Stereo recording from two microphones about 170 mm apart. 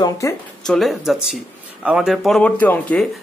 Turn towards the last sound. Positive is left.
turn(degrees=10)  # may be behind; listen again after turning